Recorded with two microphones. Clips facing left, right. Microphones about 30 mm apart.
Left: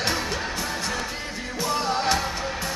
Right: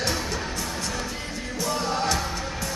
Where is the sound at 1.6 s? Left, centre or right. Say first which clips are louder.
Left 2 dB; left.